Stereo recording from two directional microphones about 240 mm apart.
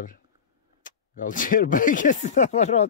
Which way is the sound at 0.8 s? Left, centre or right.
Left.